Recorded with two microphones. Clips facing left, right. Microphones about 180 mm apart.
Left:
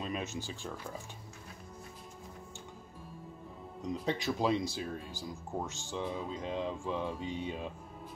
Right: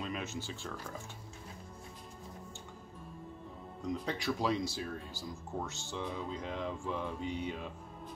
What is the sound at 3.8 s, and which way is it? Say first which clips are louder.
Speech: left 2 dB; 20° left (ahead or behind).